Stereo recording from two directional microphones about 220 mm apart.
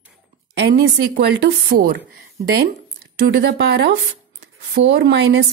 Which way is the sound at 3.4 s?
50° right (ahead or behind).